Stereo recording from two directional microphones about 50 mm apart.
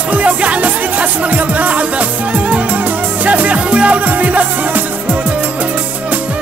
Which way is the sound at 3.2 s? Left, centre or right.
Right.